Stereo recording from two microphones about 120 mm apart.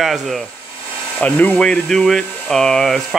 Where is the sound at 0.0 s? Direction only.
Centre (ahead or behind).